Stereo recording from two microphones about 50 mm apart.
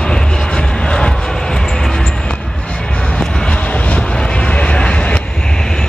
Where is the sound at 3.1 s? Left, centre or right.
Centre.